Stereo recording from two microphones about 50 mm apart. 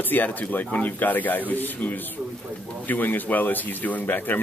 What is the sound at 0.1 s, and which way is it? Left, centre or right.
Speech, left.